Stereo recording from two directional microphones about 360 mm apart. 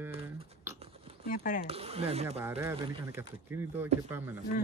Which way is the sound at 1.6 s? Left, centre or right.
Centre.